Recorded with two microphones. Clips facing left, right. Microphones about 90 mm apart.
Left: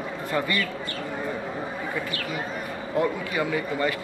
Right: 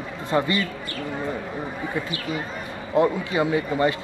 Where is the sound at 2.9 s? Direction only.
25° right (ahead or behind).